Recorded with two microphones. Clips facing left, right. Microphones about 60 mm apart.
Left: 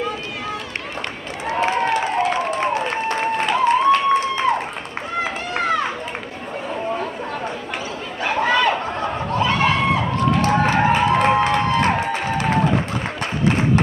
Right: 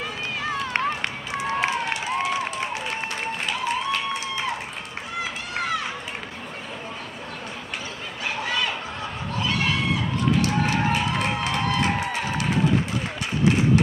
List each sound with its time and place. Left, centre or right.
1.4 s applause: left
5.2 s run: left
8.2 s chatter: left